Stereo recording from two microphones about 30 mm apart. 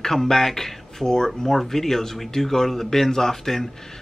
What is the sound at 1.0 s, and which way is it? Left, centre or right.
Speech, left.